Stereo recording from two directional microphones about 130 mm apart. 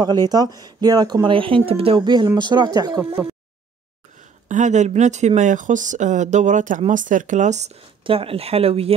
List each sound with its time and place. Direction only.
0.0 s speech: 35° right (ahead or behind)
4.5 s speech: 70° right (ahead or behind)
8.0 s speech: 45° right (ahead or behind)